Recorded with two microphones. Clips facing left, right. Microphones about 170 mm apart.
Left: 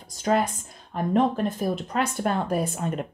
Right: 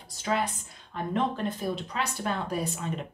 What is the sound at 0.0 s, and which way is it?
Speech, 45° left (ahead or behind).